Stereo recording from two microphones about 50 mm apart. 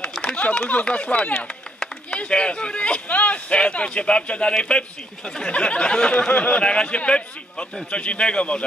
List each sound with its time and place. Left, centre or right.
0.2 s a man's voice: left